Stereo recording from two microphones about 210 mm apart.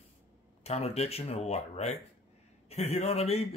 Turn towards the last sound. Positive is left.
turn(degrees=30)  # may be behind; listen again after turning